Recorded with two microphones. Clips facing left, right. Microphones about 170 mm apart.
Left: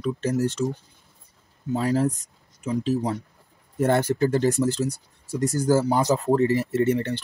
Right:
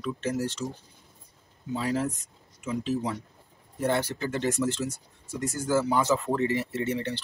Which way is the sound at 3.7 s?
50° left (ahead or behind).